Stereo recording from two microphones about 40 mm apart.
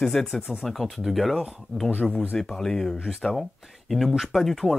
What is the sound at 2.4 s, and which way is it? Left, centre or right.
Speech, centre.